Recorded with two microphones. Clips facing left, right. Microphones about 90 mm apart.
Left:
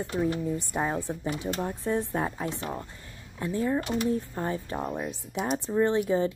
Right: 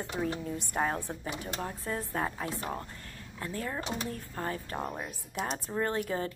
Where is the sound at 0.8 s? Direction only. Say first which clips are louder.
Left 4 dB; 15° left (ahead or behind).